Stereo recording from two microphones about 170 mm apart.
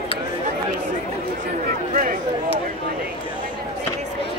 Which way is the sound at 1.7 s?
55° right (ahead or behind).